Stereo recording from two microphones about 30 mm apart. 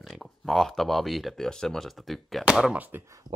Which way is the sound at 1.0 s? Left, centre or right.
Centre.